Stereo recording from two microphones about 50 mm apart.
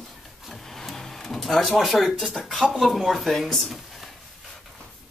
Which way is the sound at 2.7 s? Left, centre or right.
Centre.